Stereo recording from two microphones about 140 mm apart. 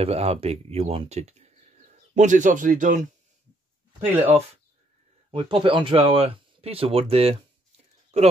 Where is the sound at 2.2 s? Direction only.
65° right (ahead or behind).